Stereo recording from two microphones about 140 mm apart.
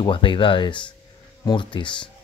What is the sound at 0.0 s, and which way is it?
Speech, 35° left (ahead or behind).